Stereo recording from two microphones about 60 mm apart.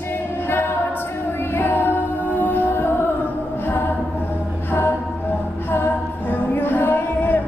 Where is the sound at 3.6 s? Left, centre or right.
Left.